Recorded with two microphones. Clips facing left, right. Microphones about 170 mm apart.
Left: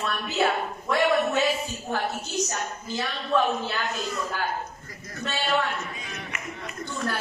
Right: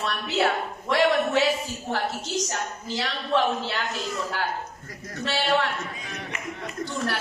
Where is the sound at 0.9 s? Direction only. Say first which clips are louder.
Right 1 dB; 85° right.